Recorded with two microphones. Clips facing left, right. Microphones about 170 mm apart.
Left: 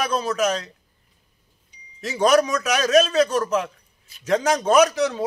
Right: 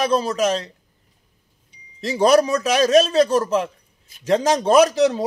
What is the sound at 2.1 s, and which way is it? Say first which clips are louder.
A man's voice: right 2 dB; 30° right (ahead or behind).